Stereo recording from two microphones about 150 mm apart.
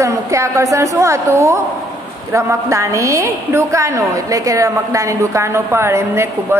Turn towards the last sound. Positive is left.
turn(degrees=-15)  # may be behind; listen again after turning